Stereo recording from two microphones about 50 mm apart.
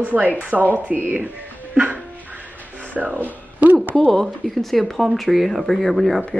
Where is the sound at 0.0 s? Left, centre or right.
Right.